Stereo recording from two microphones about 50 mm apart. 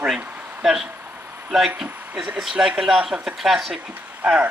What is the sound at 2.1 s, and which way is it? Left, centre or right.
Speech, centre.